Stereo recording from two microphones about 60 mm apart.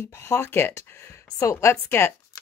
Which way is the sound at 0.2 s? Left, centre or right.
Left.